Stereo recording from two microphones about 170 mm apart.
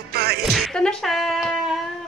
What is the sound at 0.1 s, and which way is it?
Music, 70° right (ahead or behind).